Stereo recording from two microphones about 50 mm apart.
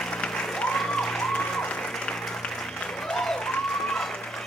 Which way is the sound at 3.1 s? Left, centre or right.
Centre.